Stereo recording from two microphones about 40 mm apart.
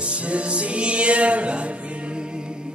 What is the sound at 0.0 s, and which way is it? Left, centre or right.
Music, right.